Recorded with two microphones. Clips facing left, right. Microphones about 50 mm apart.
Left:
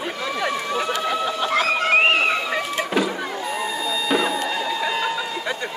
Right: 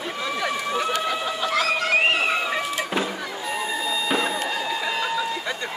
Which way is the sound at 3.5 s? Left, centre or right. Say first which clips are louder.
Right 1 dB; centre.